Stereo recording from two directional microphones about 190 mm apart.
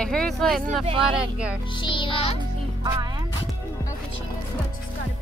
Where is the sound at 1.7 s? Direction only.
25° left (ahead or behind).